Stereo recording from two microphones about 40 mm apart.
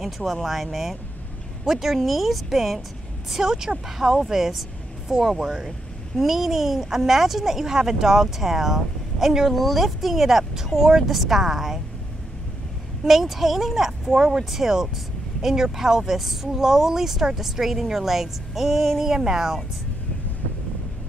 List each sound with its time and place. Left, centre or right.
0.0 s speech: centre
3.3 s speech: centre
5.0 s speech: centre
9.5 s speech: centre
13.0 s speech: centre